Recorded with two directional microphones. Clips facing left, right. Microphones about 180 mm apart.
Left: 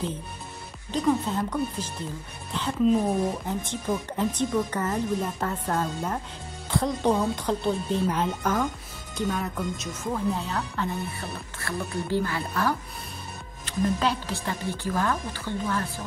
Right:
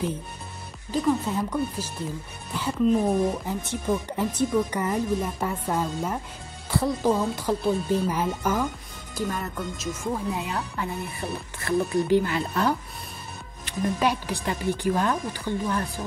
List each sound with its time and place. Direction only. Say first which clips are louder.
0.9 s speech: even; 5° right (ahead or behind)
9.9 s speech: left 1 dB; 10° right (ahead or behind)